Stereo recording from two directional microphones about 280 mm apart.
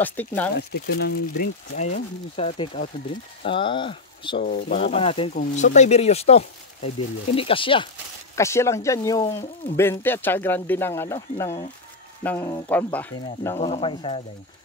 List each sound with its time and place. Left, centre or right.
0.0 s speech: centre
0.6 s speech: left; by 4.4 s centre
4.4 s speech: left